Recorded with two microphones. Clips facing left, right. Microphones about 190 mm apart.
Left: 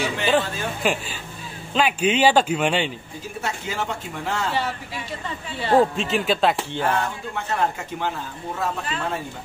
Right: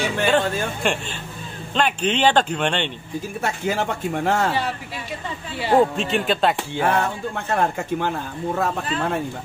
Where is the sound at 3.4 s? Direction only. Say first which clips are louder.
Right 4 dB; 50° right (ahead or behind).